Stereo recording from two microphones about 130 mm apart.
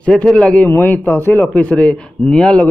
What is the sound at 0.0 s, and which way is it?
A man's voice, 5° left (ahead or behind).